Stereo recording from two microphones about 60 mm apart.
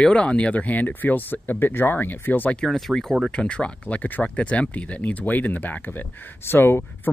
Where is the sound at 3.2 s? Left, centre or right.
Centre.